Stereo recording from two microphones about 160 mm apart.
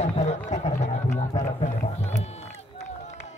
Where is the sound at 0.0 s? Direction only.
45° left (ahead or behind).